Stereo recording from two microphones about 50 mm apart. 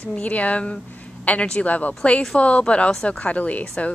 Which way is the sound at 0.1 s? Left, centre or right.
Left.